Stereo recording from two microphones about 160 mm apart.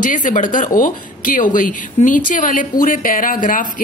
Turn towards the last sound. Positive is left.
turn(degrees=55)  # may be behind; listen again after turning